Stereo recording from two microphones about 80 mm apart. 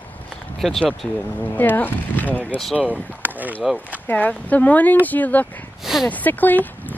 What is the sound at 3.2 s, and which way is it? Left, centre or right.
Rowboat, right.